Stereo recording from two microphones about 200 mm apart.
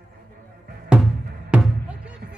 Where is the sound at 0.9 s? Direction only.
Centre (ahead or behind).